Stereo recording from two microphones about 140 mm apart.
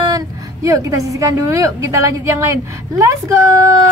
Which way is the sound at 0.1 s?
25° right (ahead or behind).